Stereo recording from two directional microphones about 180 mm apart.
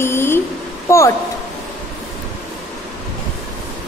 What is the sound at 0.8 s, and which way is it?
Speech, 15° left (ahead or behind).